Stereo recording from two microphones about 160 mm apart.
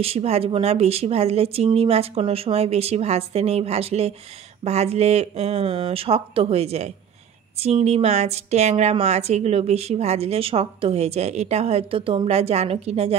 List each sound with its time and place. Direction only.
0.0 s a woman's voice: 40° right (ahead or behind)